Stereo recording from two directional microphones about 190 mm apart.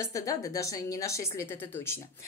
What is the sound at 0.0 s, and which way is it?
A woman's voice, 15° left (ahead or behind).